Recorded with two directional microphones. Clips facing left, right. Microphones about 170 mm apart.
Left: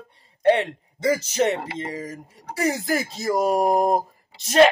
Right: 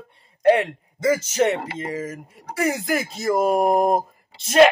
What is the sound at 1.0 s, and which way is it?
Speech, 35° left (ahead or behind).